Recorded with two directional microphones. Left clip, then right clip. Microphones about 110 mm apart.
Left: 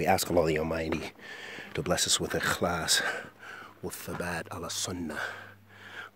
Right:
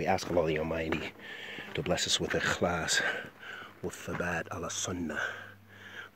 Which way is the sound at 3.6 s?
25° left (ahead or behind).